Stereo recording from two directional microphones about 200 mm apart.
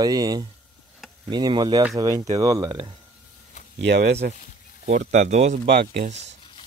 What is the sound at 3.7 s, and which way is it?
Speech, 55° right (ahead or behind).